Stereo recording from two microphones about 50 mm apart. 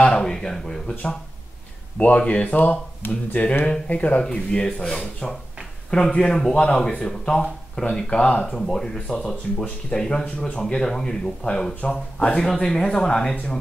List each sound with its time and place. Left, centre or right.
0.0 s speech: centre
2.0 s a man's voice: left
3.0 s speech: left
3.6 s a man's voice: centre
8.5 s speech: centre